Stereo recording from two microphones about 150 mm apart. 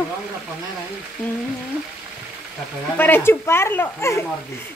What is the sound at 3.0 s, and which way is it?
Speech, 15° left (ahead or behind).